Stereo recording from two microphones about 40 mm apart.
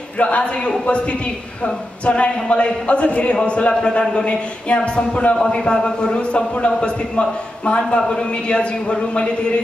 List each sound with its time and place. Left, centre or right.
0.2 s speech: left